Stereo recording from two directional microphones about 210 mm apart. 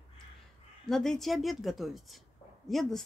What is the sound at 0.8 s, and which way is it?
Speech, centre (ahead or behind).